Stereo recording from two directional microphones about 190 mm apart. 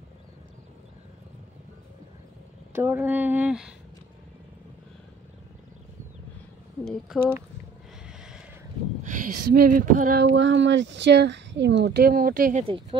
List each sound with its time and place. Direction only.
2.7 s speech: 10° right (ahead or behind)
6.8 s speech: centre (ahead or behind)
8.1 s a sound: 5° right (ahead or behind)
9.0 s speech: 45° right (ahead or behind)
10.2 s speech: 75° right (ahead or behind); by 12.6 s 45° right (ahead or behind)